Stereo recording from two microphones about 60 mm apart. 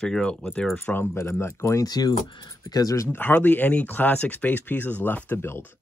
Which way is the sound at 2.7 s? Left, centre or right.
Left.